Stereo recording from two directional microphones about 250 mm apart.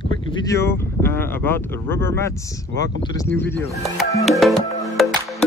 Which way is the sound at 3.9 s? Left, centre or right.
Centre.